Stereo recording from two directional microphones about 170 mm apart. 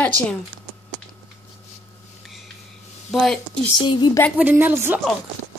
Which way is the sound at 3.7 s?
25° left (ahead or behind).